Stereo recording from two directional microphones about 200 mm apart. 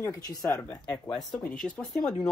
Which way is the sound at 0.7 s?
5° left (ahead or behind).